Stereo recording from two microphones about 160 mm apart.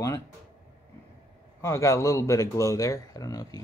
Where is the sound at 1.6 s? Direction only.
20° left (ahead or behind).